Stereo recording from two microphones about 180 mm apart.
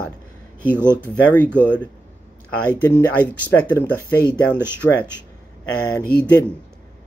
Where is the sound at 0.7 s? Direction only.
10° right (ahead or behind).